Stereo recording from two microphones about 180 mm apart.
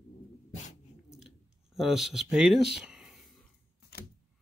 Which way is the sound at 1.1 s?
Centre (ahead or behind).